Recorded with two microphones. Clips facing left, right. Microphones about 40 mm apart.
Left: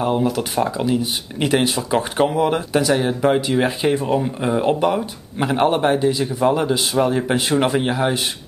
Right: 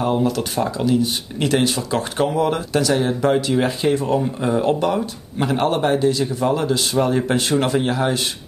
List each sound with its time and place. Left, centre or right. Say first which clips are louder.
0.0 s speech: even; centre